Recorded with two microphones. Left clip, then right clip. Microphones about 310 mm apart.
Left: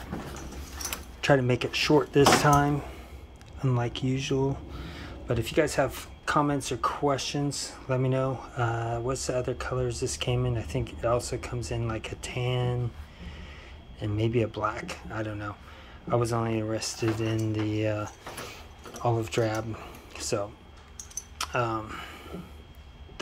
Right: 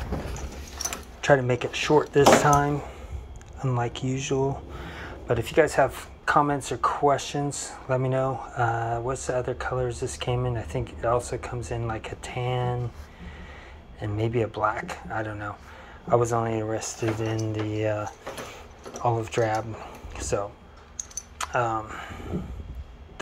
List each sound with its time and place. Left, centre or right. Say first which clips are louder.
0.8 s speech: right 3 dB; centre
13.9 s speech: right 1 dB; centre
21.4 s a sound: right 3 dB; centre